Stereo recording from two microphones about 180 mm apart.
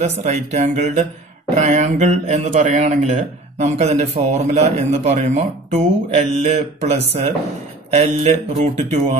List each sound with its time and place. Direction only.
0.0 s speech: 40° right (ahead or behind)